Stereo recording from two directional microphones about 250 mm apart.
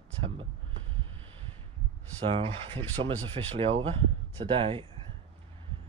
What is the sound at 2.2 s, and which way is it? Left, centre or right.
Speech, right.